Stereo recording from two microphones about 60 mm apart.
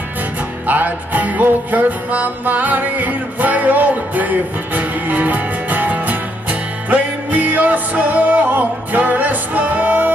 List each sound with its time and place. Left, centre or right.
0.7 s music: right